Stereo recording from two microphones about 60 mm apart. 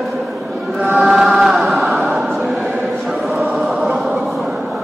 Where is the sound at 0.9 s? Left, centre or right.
Centre.